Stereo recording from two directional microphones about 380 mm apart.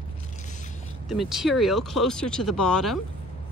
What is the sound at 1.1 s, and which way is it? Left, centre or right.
A woman's voice, centre.